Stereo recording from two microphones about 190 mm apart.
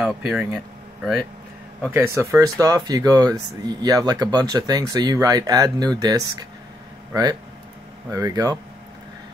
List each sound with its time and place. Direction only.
0.0 s speech: 5° right (ahead or behind)
1.9 s speech: 15° right (ahead or behind)